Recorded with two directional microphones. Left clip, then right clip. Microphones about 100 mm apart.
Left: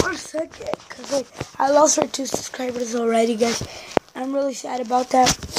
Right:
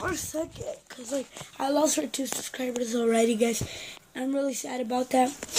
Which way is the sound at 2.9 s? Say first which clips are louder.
Left 5 dB; 25° right (ahead or behind).